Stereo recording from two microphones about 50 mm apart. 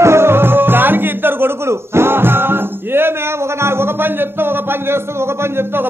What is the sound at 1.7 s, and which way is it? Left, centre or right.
Speech, right.